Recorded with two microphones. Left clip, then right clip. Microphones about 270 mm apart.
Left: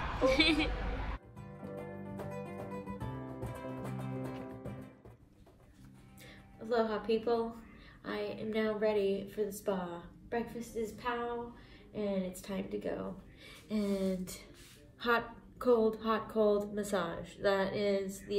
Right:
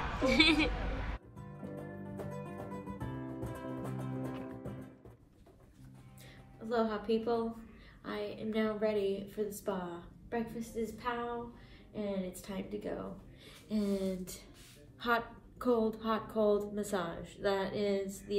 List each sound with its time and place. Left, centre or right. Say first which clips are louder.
0.3 s a woman's voice: right 2 dB; centre
1.6 s music: left 1 dB; left
6.6 s a woman's voice: left 1 dB; centre